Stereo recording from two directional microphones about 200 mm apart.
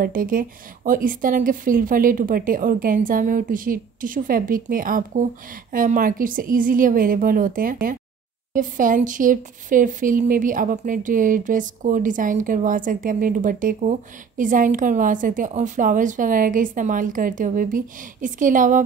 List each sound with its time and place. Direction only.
0.0 s a woman's voice: 45° right (ahead or behind)